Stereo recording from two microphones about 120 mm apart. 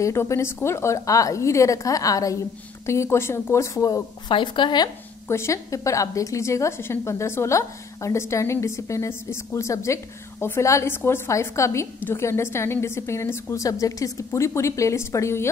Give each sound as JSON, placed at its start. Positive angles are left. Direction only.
{"t": 0.0, "sound": "a woman's voice", "side_deg": 25}
{"t": 4.3, "sound": "a woman's voice", "side_deg": 40}
{"t": 5.3, "sound": "a woman's voice", "side_deg": 25}